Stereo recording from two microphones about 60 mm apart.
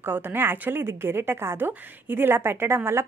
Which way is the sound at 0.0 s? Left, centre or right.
Right.